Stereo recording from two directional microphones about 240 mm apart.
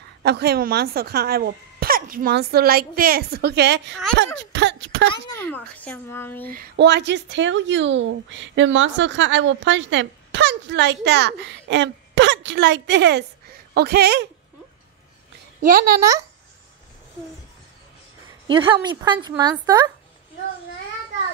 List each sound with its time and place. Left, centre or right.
0.2 s speech: right
5.1 s speech: centre
6.5 s speech: right
15.6 s speech: right
18.5 s a woman's voice: centre